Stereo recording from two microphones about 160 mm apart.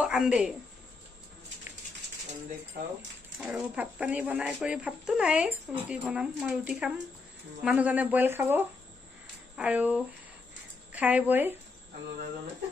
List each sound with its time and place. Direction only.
0.0 s speech: 5° right (ahead or behind)
3.3 s a woman's voice: 10° right (ahead or behind)